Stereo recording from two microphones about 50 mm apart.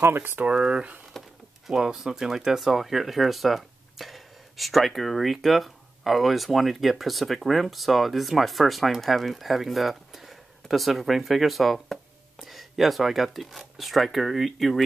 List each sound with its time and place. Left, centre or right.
0.1 s speech: right
0.5 s speech: centre
1.1 s a sound: centre
1.7 s speech: centre